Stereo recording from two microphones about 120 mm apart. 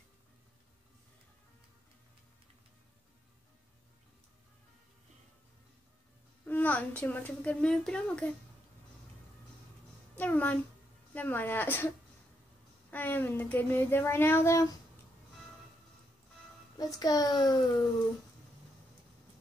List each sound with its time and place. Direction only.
6.4 s a woman's voice: 15° left (ahead or behind)
10.1 s a child's voice: 15° left (ahead or behind)
12.9 s speech: 15° left (ahead or behind)
16.7 s a child's voice: 30° left (ahead or behind)